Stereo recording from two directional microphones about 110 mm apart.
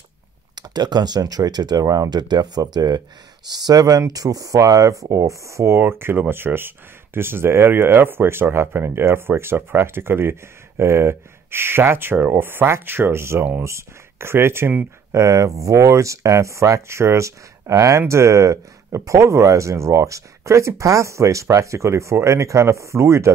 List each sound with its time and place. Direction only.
0.6 s speech: 40° right (ahead or behind); by 23.3 s 25° right (ahead or behind)